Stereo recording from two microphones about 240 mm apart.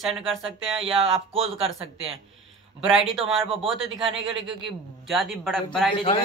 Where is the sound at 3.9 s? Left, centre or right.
Right.